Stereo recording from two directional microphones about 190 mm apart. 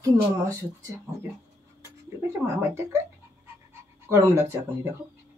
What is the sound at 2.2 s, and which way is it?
Speech, 15° right (ahead or behind).